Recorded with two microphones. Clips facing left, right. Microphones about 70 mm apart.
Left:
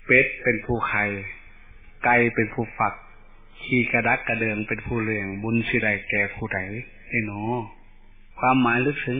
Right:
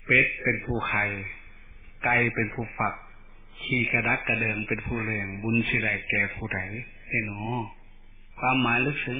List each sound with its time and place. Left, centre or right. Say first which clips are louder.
0.0 s a man's voice: left 4 dB; left
2.3 s speech: left 5 dB; centre
2.7 s a man's voice: left 4 dB; left
7.2 s speech: left 5 dB; centre
8.6 s a man's voice: left 4 dB; left